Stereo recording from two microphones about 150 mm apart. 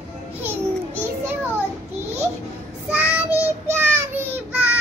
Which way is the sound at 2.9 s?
10° right (ahead or behind).